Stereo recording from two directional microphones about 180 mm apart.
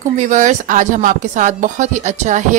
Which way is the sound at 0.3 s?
45° right (ahead or behind).